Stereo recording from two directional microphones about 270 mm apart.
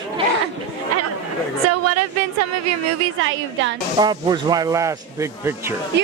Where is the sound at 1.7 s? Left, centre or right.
Right.